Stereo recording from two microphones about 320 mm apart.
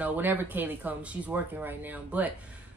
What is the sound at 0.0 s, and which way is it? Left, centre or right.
A woman's voice, centre.